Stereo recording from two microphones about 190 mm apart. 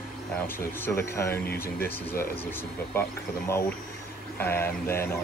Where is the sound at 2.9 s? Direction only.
10° left (ahead or behind).